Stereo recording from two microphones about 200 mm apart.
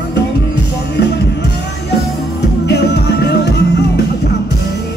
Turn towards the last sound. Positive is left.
turn(degrees=55)  # may be behind; listen again after turning